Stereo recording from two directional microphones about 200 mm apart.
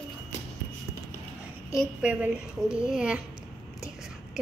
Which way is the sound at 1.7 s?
5° right (ahead or behind).